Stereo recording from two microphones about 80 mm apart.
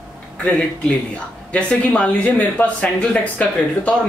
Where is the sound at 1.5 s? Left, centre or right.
Centre.